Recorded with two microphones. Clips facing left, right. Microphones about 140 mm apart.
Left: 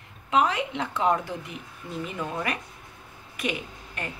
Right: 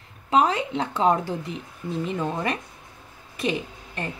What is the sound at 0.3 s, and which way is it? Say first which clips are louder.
Speech: right 3 dB; 35° right (ahead or behind).